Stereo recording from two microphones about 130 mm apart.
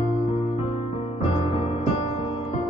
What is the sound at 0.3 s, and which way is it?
Music, 55° left (ahead or behind).